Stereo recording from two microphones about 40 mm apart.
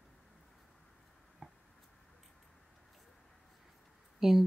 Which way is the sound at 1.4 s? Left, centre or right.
Centre.